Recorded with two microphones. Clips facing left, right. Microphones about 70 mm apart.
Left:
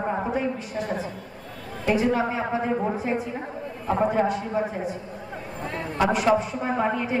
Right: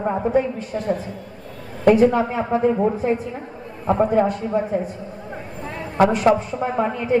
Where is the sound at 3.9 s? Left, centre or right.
Right.